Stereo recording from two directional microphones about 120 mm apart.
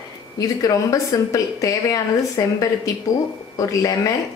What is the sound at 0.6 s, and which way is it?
Speech, 30° left (ahead or behind).